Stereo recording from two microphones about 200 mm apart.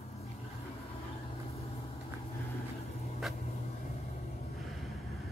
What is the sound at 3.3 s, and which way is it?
Vehicle, centre (ahead or behind).